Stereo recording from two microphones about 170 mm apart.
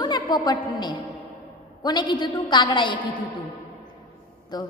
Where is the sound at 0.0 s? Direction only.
25° left (ahead or behind).